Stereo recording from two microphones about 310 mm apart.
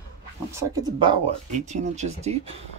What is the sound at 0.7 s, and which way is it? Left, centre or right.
Speech, centre.